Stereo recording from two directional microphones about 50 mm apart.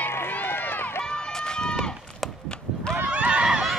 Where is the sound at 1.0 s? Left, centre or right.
Centre.